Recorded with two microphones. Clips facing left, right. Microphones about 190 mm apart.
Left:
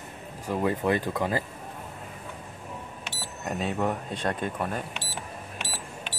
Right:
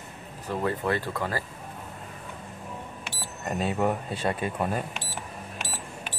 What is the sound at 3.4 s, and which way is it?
Speech, centre (ahead or behind).